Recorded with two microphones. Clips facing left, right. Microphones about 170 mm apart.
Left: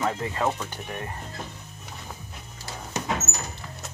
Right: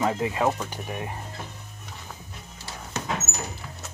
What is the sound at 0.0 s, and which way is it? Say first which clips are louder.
Speech: right 2 dB; 10° right (ahead or behind).